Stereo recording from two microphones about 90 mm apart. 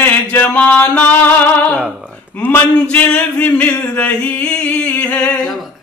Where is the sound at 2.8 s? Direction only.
15° left (ahead or behind).